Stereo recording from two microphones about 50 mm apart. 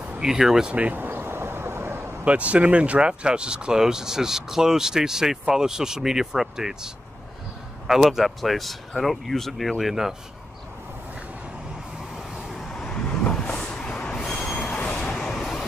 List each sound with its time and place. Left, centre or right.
0.2 s speech: centre
0.9 s vehicle: right
2.2 s speech: right; by 10.1 s centre
12.7 s vehicle: centre
14.1 s train: centre
14.7 s a sound: left
15.0 s vehicle: centre